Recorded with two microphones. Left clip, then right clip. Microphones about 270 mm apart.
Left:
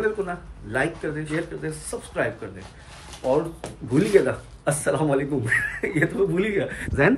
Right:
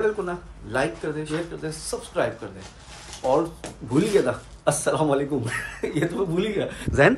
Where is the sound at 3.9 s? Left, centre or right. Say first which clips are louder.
Left 2 dB; centre.